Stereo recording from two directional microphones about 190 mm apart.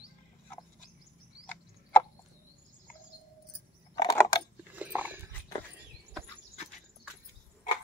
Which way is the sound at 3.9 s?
20° left (ahead or behind).